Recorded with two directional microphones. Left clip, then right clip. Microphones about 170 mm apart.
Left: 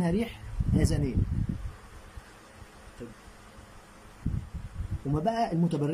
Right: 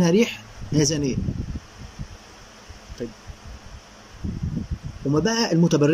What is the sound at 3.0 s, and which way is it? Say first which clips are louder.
Speech: right 12 dB; 20° right (ahead or behind).